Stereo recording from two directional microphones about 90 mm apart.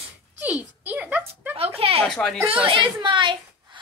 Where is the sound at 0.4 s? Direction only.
20° right (ahead or behind).